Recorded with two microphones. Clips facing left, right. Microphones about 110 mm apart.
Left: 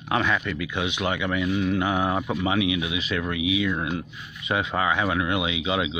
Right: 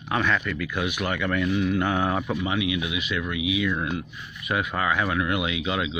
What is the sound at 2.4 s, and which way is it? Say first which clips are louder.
Speech: left 2 dB; 30° left (ahead or behind).